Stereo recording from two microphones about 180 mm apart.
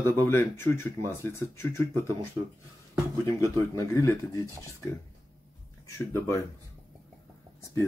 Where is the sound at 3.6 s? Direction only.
15° left (ahead or behind).